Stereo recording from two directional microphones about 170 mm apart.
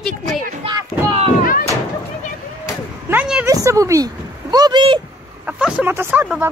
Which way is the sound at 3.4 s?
15° right (ahead or behind).